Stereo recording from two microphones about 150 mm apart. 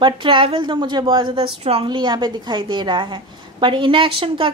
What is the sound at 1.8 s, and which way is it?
A woman's voice, 30° right (ahead or behind).